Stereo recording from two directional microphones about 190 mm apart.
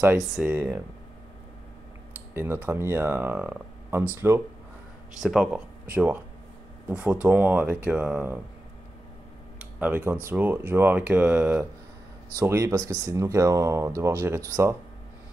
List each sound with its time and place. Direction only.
0.0 s speech: 10° right (ahead or behind)
2.3 s speech: 10° right (ahead or behind)
9.6 s a sound: 10° right (ahead or behind)
10.2 s speech: 10° right (ahead or behind)